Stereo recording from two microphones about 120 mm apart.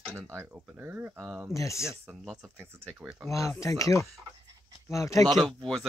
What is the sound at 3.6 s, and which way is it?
Speech, 25° left (ahead or behind).